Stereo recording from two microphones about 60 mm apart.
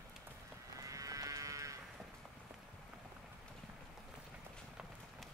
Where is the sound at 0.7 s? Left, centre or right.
Right.